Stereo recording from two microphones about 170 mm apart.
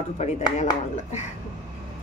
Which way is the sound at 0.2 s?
40° left (ahead or behind).